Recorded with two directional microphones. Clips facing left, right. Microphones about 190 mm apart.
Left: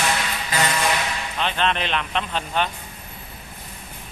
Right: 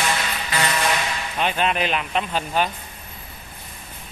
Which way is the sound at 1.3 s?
10° right (ahead or behind).